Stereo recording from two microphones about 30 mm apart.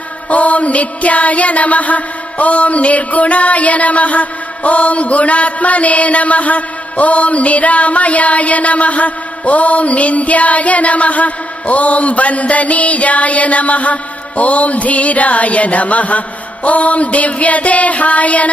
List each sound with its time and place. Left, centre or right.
0.3 s music: left